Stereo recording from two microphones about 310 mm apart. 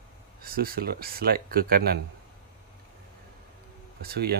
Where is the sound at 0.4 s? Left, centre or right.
Right.